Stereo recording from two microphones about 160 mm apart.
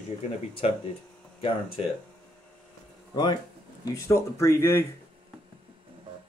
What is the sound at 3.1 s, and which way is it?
Speech, 30° left (ahead or behind).